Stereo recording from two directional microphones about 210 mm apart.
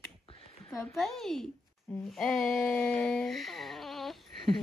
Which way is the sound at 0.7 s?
Centre (ahead or behind).